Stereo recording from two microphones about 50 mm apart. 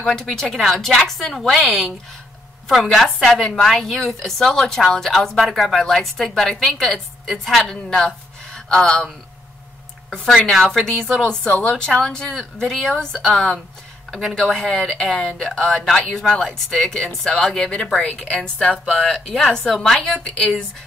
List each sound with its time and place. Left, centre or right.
0.0 s a woman's voice: centre
3.3 s a woman's voice: centre
3.6 s a woman's voice: centre
10.0 s a woman's voice: centre
11.4 s a woman's voice: left
14.4 s a woman's voice: centre
19.1 s a woman's voice: centre
20.2 s speech: centre